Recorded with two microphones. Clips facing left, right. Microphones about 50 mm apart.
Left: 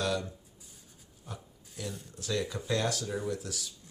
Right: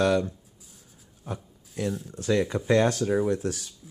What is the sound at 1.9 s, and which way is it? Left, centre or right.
Speech, centre.